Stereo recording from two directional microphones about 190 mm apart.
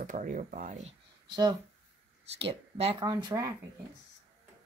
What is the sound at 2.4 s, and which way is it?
Speech, 30° right (ahead or behind).